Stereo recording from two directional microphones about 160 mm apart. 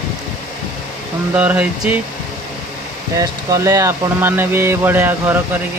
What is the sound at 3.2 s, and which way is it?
Speech, 20° right (ahead or behind).